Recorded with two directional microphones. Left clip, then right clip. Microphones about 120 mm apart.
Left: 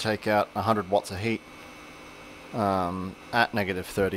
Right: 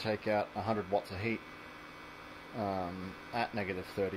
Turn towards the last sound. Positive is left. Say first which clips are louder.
# left 9 dB
turn(degrees=60)  # may be behind; listen again after turning